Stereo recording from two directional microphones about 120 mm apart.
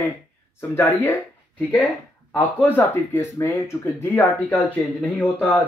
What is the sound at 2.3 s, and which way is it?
Speech, 15° left (ahead or behind).